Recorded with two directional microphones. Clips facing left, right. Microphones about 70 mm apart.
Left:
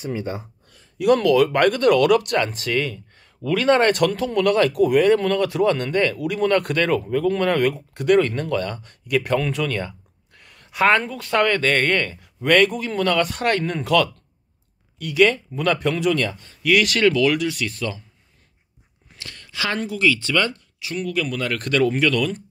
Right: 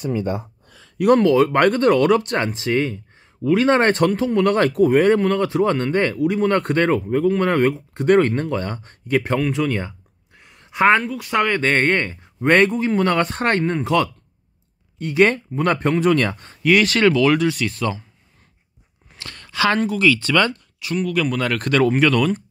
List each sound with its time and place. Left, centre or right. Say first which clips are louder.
1.1 s speech: right 2 dB; right
9.4 s a sound: right 3 dB; right
11.0 s speech: even; centre
11.4 s speech: right 2 dB; right
19.1 s speech: right 6 dB; right